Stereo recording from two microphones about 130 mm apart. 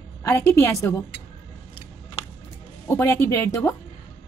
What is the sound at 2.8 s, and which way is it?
Speech, 20° left (ahead or behind).